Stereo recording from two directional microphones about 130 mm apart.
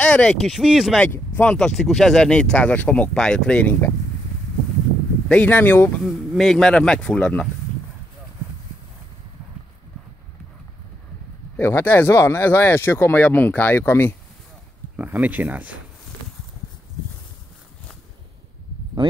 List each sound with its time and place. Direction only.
0.0 s speech: 10° left (ahead or behind)
0.5 s a man's voice: 5° right (ahead or behind)
0.9 s speech: 15° left (ahead or behind)
5.3 s speech: 10° left (ahead or behind)
6.0 s a man's voice: centre (ahead or behind)
11.5 s speech: 15° left (ahead or behind)
15.0 s speech: 10° right (ahead or behind)